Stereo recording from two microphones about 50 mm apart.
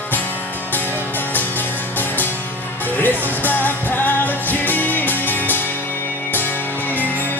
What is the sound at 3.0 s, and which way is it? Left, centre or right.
Music, left.